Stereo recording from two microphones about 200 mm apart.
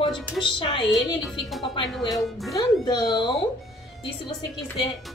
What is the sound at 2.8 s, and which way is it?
Speech, 20° left (ahead or behind).